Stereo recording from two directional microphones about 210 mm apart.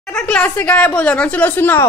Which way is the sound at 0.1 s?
5° left (ahead or behind).